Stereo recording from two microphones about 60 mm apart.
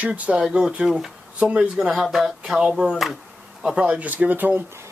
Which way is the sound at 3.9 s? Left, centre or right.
Right.